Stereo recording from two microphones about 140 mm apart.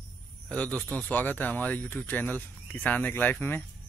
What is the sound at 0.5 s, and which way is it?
Speech, 10° left (ahead or behind).